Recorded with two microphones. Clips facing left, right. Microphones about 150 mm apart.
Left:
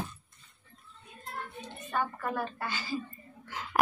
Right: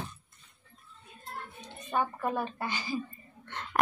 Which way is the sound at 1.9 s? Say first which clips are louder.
Right 2 dB; 15° right (ahead or behind).